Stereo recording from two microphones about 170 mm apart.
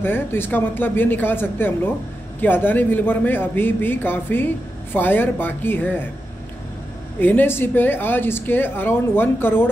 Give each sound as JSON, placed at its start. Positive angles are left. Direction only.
{"t": 0.0, "sound": "speech", "side_deg": 10}
{"t": 7.2, "sound": "speech", "side_deg": 10}